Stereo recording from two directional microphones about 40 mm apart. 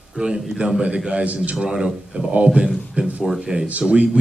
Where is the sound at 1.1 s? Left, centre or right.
Right.